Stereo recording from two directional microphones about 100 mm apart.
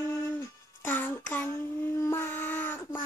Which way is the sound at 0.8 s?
20° left (ahead or behind).